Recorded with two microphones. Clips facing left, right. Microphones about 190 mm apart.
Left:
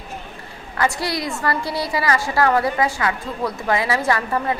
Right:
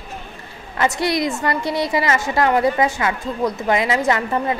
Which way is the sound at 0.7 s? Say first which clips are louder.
Right 3 dB; 20° right (ahead or behind).